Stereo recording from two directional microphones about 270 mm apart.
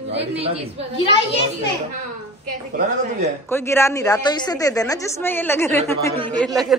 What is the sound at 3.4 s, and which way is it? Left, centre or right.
A woman's voice, centre.